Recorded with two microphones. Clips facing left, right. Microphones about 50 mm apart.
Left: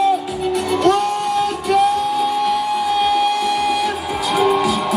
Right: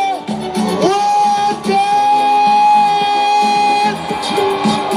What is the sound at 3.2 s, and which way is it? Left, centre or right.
Music, right.